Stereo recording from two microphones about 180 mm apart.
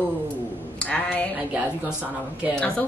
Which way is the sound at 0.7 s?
5° left (ahead or behind).